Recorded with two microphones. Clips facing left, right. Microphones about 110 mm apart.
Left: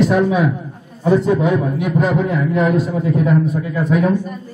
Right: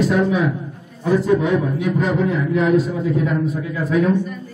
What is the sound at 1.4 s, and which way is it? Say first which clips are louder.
A man's voice: left 2 dB; 10° left (ahead or behind).